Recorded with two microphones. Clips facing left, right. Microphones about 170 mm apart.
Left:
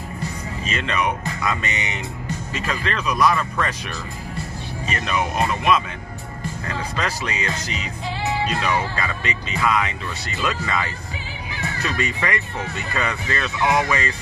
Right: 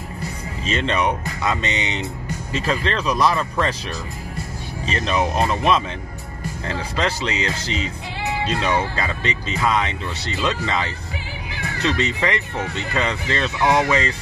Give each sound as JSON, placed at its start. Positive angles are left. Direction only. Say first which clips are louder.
{"t": 0.7, "sound": "speech", "louder": "right 3 dB", "side_deg": -30}
{"t": 4.8, "sound": "speech", "louder": "right 3 dB", "side_deg": -30}